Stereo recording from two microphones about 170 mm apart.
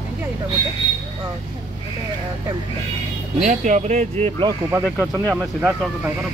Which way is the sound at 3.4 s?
45° right (ahead or behind).